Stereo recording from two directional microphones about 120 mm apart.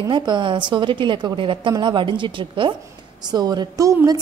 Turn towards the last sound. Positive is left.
turn(degrees=-30)  # may be behind; listen again after turning